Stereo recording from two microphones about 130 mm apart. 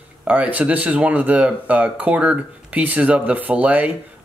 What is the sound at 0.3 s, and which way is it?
Speech, 10° right (ahead or behind).